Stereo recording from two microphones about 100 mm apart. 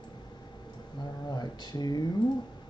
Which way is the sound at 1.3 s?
45° left (ahead or behind).